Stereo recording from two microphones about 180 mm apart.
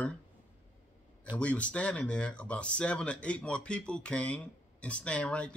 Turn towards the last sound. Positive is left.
turn(degrees=5)  # may be behind; listen again after turning